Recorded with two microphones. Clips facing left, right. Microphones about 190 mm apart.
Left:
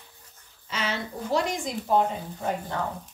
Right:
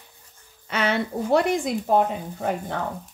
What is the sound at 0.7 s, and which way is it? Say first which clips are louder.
Speech: right 7 dB; 60° right (ahead or behind).